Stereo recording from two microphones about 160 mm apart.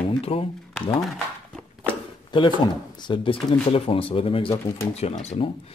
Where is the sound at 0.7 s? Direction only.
Centre (ahead or behind).